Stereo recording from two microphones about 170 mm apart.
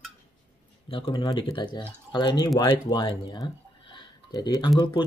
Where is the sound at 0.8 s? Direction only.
30° left (ahead or behind).